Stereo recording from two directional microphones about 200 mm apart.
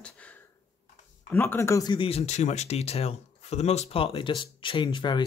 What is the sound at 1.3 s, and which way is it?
Speech, 10° left (ahead or behind).